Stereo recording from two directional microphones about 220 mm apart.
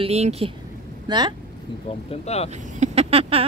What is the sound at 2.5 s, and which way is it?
Speech, 30° right (ahead or behind).